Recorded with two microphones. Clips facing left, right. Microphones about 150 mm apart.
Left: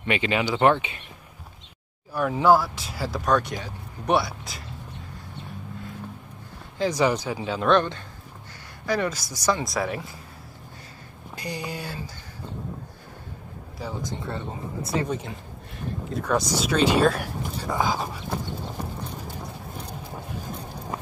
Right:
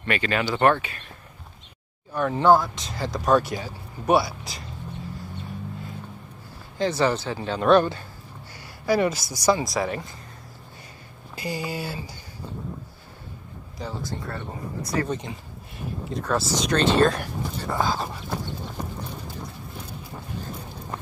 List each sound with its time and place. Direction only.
0.0 s speech: 15° left (ahead or behind)
2.1 s speech: 5° left (ahead or behind)
6.9 s speech: 15° left (ahead or behind)
7.6 s speech: 5° right (ahead or behind)
9.7 s speech: centre (ahead or behind)
11.3 s speech: 5° right (ahead or behind)
13.7 s speech: 10° left (ahead or behind)
14.2 s speech: 25° left (ahead or behind)
15.0 s speech: 10° left (ahead or behind)